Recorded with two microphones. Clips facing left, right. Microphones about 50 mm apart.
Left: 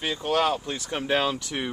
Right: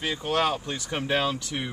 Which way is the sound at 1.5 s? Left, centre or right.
Centre.